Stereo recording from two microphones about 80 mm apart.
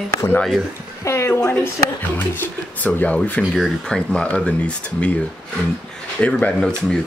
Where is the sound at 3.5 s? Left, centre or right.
Centre.